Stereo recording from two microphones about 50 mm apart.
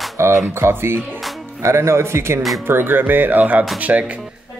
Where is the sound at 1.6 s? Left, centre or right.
Right.